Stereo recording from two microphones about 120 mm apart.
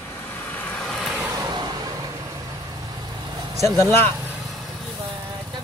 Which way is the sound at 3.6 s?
25° left (ahead or behind).